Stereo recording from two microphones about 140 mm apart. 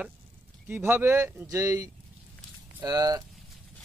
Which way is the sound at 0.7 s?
15° right (ahead or behind).